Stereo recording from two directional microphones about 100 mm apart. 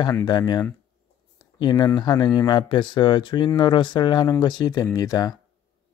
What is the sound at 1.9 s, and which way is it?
Speech, 45° left (ahead or behind).